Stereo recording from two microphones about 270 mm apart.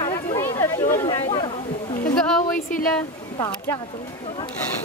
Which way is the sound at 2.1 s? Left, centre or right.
Centre.